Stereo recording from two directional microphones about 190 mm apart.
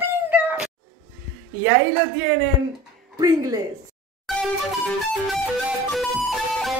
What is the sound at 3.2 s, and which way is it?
Speech, 20° right (ahead or behind).